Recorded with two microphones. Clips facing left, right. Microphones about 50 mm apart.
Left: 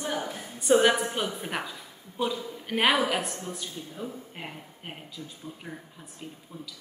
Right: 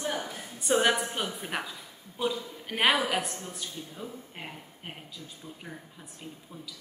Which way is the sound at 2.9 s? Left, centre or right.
Centre.